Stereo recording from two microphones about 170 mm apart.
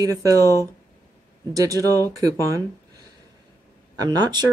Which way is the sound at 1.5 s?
20° right (ahead or behind).